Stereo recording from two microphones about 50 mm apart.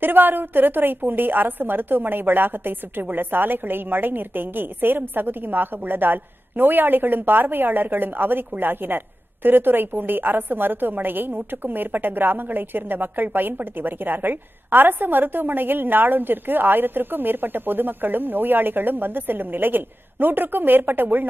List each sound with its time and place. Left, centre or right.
0.0 s a woman's voice: right